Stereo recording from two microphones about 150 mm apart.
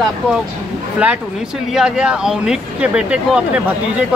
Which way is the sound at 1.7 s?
5° right (ahead or behind).